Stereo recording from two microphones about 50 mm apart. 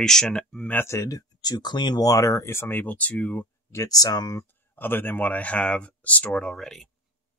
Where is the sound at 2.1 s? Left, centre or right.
Left.